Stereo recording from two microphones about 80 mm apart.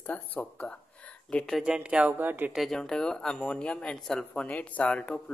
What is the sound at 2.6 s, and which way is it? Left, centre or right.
Speech, centre.